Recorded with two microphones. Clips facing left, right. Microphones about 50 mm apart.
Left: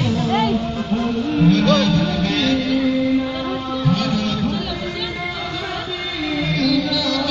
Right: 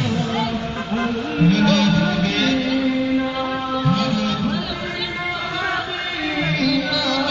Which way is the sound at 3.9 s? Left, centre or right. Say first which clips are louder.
Left 1 dB; right.